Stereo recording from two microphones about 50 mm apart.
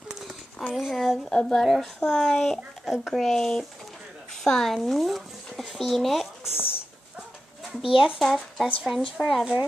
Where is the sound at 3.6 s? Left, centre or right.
Centre.